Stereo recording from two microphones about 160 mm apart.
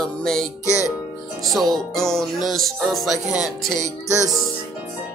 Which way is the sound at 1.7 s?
Centre (ahead or behind).